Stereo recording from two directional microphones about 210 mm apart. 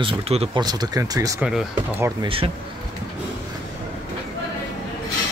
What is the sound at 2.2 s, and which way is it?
Speech, 25° right (ahead or behind).